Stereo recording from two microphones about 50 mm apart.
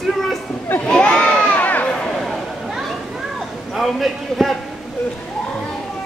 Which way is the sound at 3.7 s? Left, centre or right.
Centre.